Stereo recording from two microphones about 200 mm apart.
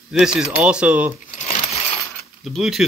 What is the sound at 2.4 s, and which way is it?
Speech, centre (ahead or behind).